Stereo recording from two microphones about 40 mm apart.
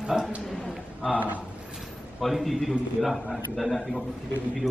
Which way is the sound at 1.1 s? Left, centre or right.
Right.